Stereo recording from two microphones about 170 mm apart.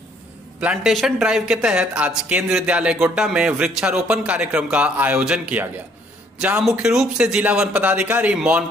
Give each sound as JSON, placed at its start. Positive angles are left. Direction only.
{"t": 0.6, "sound": "speech", "side_deg": -5}